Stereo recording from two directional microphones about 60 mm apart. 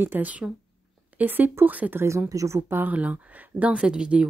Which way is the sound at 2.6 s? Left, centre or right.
Right.